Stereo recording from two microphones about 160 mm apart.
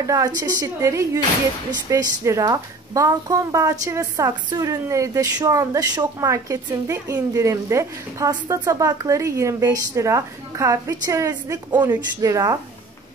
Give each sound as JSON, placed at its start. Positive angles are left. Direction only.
{"t": 0.0, "sound": "a woman's voice", "side_deg": -20}